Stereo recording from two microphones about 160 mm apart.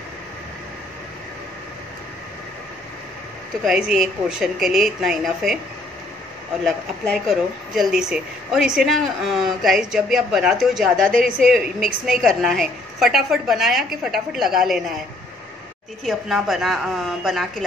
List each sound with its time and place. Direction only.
3.6 s speech: 5° right (ahead or behind)
6.6 s speech: centre (ahead or behind)
11.1 s a woman's voice: 60° right (ahead or behind)
11.5 s speech: centre (ahead or behind)
16.0 s speech: centre (ahead or behind)